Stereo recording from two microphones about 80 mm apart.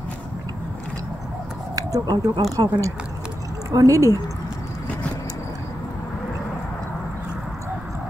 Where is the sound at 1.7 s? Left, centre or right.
Right.